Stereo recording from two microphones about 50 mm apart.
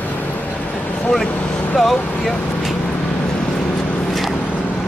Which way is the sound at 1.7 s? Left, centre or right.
Centre.